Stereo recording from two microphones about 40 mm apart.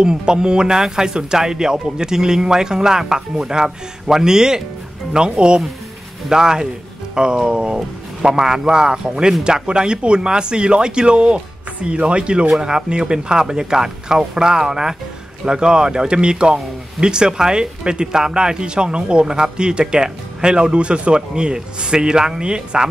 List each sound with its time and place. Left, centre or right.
0.0 s speech: centre